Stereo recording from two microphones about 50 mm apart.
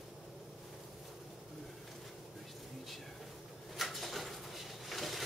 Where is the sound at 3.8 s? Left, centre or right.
Centre.